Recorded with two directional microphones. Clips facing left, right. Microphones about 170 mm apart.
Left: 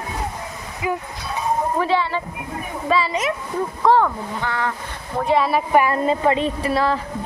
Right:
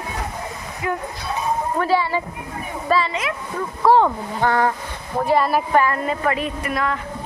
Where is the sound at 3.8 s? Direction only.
15° right (ahead or behind).